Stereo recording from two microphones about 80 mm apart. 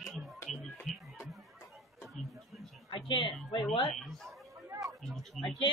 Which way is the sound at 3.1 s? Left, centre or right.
Left.